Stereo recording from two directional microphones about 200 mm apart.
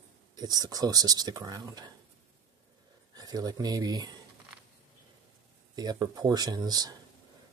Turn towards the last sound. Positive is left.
turn(degrees=-20)  # may be behind; listen again after turning